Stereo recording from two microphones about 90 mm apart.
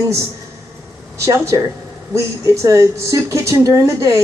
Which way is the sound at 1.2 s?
35° right (ahead or behind).